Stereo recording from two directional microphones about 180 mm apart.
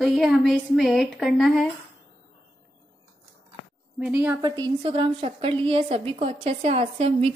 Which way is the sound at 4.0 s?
10° right (ahead or behind).